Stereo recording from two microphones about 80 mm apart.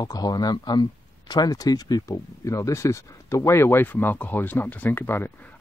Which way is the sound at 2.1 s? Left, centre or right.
Left.